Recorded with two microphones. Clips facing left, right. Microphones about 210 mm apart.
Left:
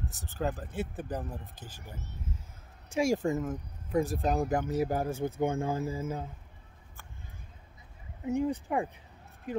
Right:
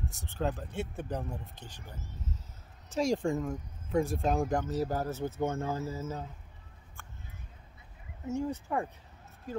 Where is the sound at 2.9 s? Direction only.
5° left (ahead or behind).